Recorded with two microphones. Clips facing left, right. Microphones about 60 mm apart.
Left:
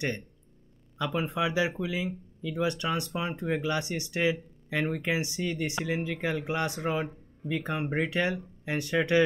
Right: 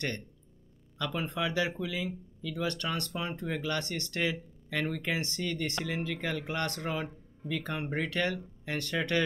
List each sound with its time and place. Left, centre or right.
0.9 s speech: centre